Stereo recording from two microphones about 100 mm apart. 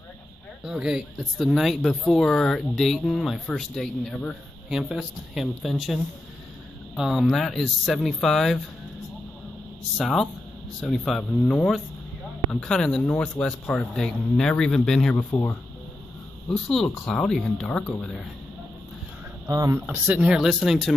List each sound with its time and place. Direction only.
0.7 s speech: 5° right (ahead or behind)
7.0 s speech: centre (ahead or behind)
9.9 s speech: centre (ahead or behind)
15.1 s speech: 25° left (ahead or behind)
16.4 s speech: 10° left (ahead or behind)
17.7 s speech: 15° left (ahead or behind)
19.5 s speech: 35° right (ahead or behind)
19.9 s speech: 15° right (ahead or behind)